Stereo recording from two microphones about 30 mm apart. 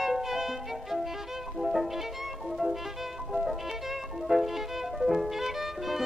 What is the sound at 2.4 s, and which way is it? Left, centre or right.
Music, centre.